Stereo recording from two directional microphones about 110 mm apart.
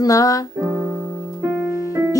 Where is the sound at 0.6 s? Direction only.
30° right (ahead or behind).